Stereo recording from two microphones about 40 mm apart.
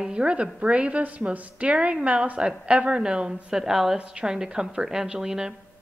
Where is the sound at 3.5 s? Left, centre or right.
Centre.